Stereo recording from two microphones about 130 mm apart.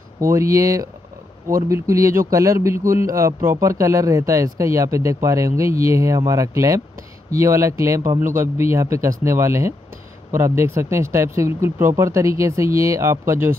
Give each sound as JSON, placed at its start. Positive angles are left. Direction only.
{"t": 0.2, "sound": "speech", "side_deg": -25}